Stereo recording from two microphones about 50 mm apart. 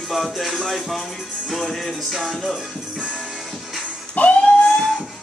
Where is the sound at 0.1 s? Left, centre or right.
Centre.